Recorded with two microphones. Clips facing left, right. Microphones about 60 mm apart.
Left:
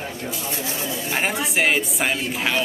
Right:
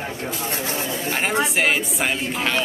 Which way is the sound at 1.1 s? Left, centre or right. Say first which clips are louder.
Right 2 dB; centre.